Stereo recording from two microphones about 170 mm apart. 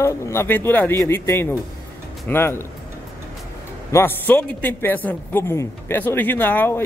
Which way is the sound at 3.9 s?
10° left (ahead or behind).